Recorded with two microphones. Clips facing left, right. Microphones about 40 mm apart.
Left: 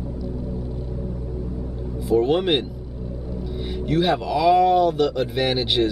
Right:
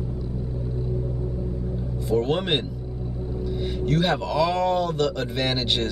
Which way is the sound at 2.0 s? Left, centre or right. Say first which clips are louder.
Left 4 dB; centre.